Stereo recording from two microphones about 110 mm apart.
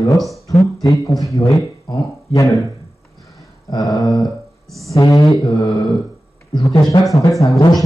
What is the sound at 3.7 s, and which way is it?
Speech, 35° left (ahead or behind).